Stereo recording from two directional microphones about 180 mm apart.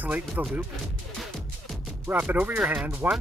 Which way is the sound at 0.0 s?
5° right (ahead or behind).